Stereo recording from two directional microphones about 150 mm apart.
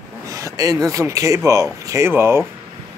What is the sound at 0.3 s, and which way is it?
Speech, 25° right (ahead or behind).